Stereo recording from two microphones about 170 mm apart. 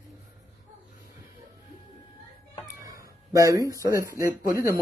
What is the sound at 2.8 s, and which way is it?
Speech, 20° right (ahead or behind).